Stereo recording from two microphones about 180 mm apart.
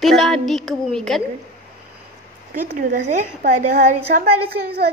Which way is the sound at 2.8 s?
45° right (ahead or behind).